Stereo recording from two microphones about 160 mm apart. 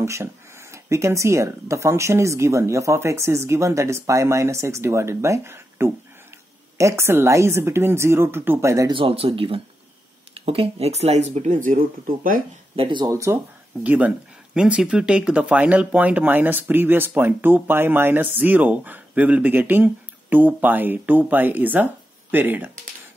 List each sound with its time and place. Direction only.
0.0 s speech: 15° right (ahead or behind)
8.9 s speech: 35° right (ahead or behind); by 12.4 s 55° right (ahead or behind)
12.7 s speech: 30° right (ahead or behind); by 22.7 s 10° right (ahead or behind)